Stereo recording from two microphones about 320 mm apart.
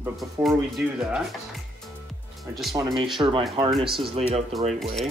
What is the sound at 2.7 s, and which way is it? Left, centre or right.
Speech, centre.